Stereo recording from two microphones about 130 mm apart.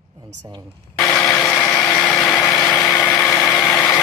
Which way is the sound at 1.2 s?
20° left (ahead or behind).